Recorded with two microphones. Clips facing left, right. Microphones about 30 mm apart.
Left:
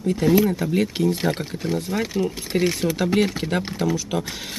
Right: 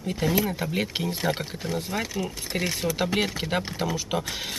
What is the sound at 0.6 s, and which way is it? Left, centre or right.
Speech, centre.